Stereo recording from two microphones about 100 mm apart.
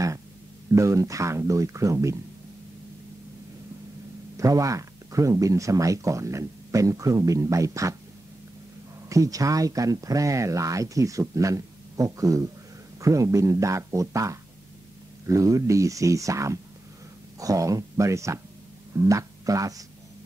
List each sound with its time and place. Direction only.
0.7 s speech: 30° right (ahead or behind)
4.4 s speech: 35° right (ahead or behind)
9.1 s speech: 35° right (ahead or behind)